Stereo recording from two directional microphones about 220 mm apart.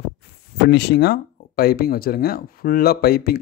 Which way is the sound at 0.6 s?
50° left (ahead or behind).